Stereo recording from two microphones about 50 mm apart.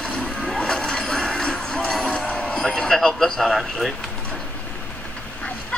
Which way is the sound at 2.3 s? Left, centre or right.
Left.